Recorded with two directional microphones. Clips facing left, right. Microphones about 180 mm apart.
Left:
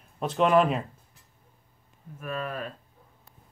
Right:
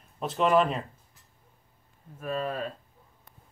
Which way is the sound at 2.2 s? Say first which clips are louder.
Right 2 dB; 30° right (ahead or behind).